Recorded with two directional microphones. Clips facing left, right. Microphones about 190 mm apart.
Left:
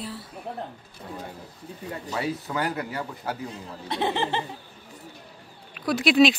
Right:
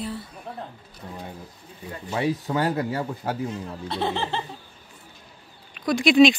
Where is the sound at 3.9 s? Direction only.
15° left (ahead or behind).